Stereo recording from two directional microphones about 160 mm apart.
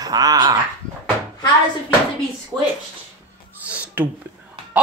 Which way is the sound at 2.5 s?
15° right (ahead or behind).